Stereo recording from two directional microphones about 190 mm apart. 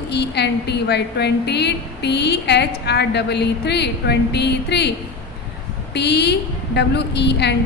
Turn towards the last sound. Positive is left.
turn(degrees=65)  # may be behind; listen again after turning